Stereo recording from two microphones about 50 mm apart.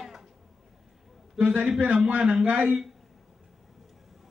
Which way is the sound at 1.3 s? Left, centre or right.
Right.